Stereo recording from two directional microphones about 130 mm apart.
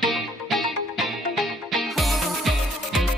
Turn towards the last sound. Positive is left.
turn(degrees=0)  # may be behind; listen again after turning